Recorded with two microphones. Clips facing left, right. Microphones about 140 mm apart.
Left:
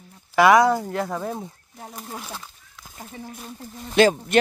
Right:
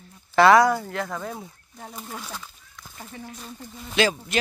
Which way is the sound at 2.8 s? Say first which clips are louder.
Left 1 dB; 15° left (ahead or behind).